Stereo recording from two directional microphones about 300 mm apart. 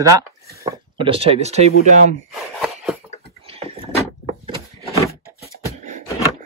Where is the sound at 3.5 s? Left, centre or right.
Centre.